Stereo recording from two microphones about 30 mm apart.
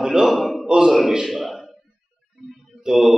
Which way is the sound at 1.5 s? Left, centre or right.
Centre.